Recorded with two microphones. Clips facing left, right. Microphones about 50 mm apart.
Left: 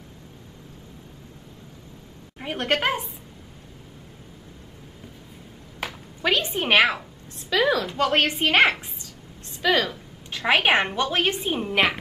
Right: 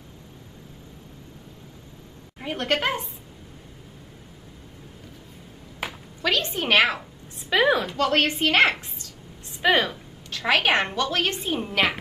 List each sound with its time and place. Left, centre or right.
2.4 s a woman's voice: centre
5.8 s a sound: centre
6.2 s a woman's voice: centre
7.4 s a woman's voice: right
8.0 s a woman's voice: centre
9.6 s speech: right
10.3 s a woman's voice: centre